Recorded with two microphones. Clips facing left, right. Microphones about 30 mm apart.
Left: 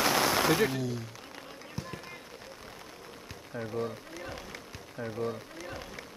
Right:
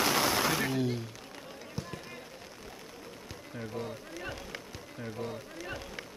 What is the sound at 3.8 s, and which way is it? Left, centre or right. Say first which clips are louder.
Speech: left 4 dB; centre.